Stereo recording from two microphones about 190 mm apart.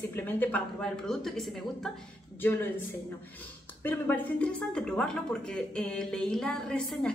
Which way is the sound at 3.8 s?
10° left (ahead or behind).